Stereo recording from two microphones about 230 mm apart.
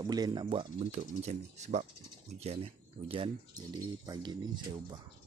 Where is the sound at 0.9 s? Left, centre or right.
Right.